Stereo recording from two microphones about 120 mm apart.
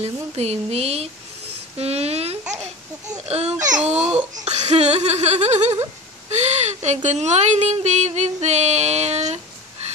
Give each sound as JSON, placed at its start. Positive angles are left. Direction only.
{"t": 0.0, "sound": "laughter", "side_deg": -60}
{"t": 1.8, "sound": "a sound", "side_deg": -60}
{"t": 3.3, "sound": "speech", "side_deg": -60}
{"t": 4.5, "sound": "laughter", "side_deg": -65}
{"t": 6.3, "sound": "speech", "side_deg": -70}